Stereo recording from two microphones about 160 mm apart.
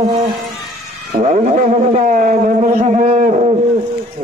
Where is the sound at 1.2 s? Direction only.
45° right (ahead or behind).